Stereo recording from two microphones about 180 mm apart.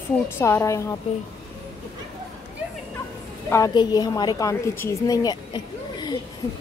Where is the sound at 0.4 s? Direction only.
15° left (ahead or behind).